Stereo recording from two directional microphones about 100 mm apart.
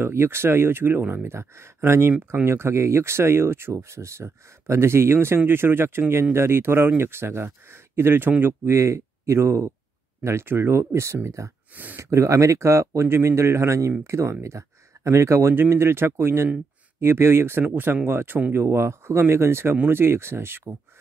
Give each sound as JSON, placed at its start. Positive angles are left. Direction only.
{"t": 0.0, "sound": "speech", "side_deg": -25}
{"t": 11.7, "sound": "speech", "side_deg": -15}
{"t": 12.0, "sound": "speech", "side_deg": -30}